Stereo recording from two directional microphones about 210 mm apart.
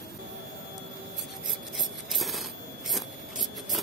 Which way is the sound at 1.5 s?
Centre (ahead or behind).